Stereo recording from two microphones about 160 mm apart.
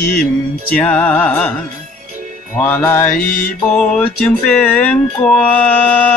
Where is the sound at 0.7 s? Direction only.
10° left (ahead or behind).